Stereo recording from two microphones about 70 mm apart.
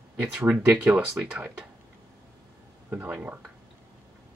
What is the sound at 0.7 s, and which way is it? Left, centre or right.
Speech, centre.